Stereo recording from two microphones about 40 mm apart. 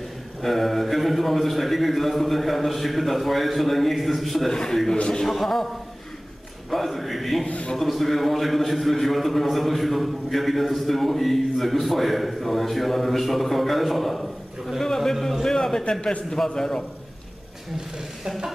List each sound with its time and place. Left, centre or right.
0.4 s a man's voice: centre
4.5 s a man's voice: centre
4.9 s a man's voice: left
5.3 s a man's voice: centre
6.7 s a man's voice: centre
7.4 s a man's voice: left
7.7 s a man's voice: centre
15.9 s a man's voice: left
16.3 s a man's voice: centre